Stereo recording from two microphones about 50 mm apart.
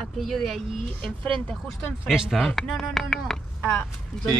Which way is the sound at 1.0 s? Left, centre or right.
Left.